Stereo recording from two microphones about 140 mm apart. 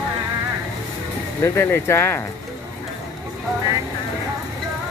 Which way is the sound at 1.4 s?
15° left (ahead or behind).